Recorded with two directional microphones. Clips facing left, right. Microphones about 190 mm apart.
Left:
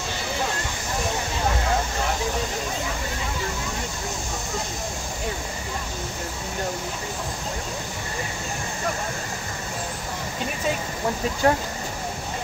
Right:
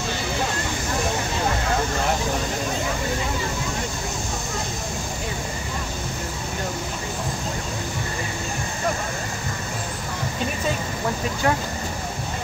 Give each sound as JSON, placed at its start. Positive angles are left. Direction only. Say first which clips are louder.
{"t": 11.4, "sound": "speech", "louder": "left 2 dB", "side_deg": 35}